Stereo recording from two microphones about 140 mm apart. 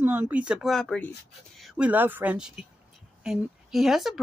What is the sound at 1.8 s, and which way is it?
Speech, 15° right (ahead or behind).